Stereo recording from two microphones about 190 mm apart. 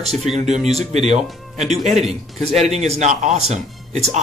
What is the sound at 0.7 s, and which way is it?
Speech, 35° right (ahead or behind).